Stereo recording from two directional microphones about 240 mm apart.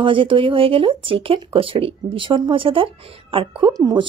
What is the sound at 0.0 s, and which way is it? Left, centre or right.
Speech, right.